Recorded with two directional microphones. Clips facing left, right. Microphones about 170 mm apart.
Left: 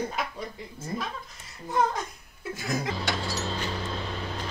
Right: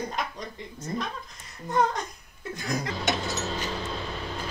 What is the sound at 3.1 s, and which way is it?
Vehicle, 20° right (ahead or behind).